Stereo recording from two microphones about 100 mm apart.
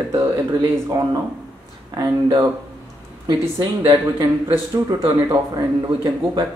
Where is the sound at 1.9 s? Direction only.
40° right (ahead or behind).